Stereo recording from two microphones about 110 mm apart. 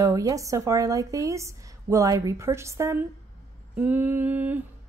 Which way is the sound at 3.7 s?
15° right (ahead or behind).